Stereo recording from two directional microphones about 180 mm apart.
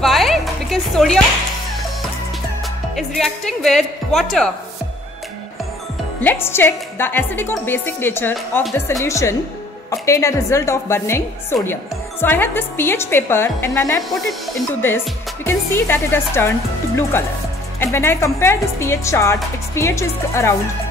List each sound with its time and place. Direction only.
0.0 s music: centre (ahead or behind)
3.0 s speech: centre (ahead or behind)
6.2 s a woman's voice: 15° left (ahead or behind)
15.4 s a woman's voice: 15° left (ahead or behind)